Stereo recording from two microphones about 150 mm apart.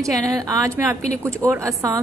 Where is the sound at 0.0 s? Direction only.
20° right (ahead or behind).